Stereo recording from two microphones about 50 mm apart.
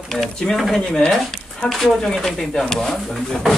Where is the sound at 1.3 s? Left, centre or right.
Centre.